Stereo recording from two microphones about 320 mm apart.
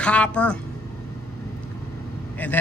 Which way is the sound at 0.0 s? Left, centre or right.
Centre.